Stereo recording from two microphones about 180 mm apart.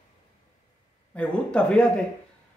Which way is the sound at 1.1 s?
5° left (ahead or behind).